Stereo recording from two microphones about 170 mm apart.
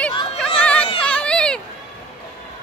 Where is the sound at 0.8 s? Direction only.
35° left (ahead or behind).